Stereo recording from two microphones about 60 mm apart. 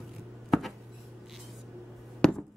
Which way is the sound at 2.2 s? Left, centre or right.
Centre.